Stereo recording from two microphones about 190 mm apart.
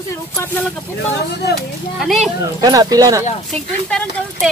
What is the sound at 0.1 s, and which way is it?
Speech, 10° left (ahead or behind).